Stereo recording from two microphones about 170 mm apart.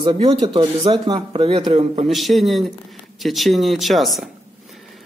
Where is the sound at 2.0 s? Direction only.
Centre (ahead or behind).